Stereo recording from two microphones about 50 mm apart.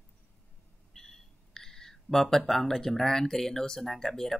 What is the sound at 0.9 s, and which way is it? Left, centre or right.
Speech, centre.